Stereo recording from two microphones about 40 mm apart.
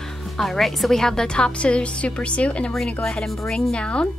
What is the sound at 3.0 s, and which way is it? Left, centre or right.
Speech, centre.